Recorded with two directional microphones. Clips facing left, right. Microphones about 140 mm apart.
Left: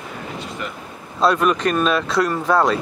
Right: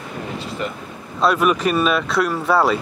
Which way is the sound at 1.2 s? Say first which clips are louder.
Even; 5° right (ahead or behind).